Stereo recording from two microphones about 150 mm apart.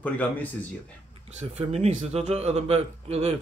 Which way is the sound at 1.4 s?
45° right (ahead or behind).